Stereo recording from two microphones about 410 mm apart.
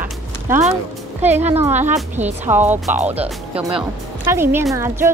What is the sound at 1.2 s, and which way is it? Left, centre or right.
A woman's voice, centre.